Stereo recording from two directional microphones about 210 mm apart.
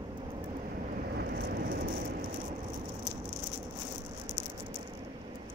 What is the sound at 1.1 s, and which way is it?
Vehicle, 50° right (ahead or behind).